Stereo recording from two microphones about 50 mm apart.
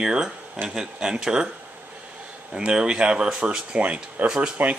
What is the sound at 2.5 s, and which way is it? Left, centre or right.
Speech, centre.